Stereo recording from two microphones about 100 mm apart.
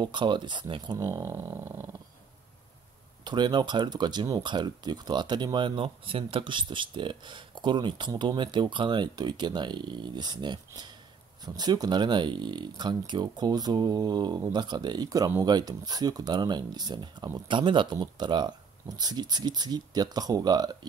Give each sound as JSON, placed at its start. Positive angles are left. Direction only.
{"t": 0.0, "sound": "speech", "side_deg": -50}
{"t": 0.9, "sound": "speech", "side_deg": -30}
{"t": 3.3, "sound": "speech", "side_deg": -50}